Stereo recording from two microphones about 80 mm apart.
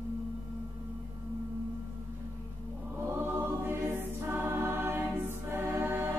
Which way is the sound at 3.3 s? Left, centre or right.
Right.